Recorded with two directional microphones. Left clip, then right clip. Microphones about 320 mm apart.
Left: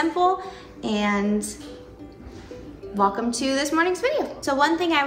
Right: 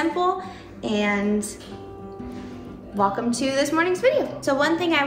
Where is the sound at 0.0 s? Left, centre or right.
Centre.